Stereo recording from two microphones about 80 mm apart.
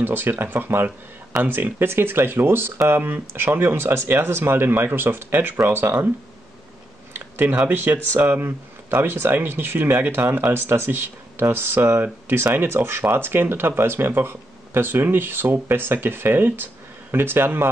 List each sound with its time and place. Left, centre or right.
0.0 s speech: right
7.2 s speech: right